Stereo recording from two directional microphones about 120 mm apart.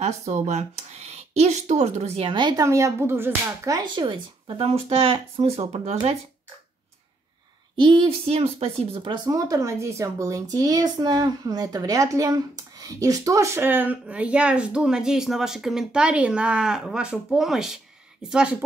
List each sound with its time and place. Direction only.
0.0 s speech: 70° right (ahead or behind)
2.3 s speech: 40° right (ahead or behind)
2.6 s speech: 25° right (ahead or behind)
3.9 s speech: 45° right (ahead or behind)
7.7 s speech: 40° right (ahead or behind)
8.1 s speech: 60° right (ahead or behind)
9.0 s a woman's voice: 40° right (ahead or behind); by 18.6 s 10° right (ahead or behind)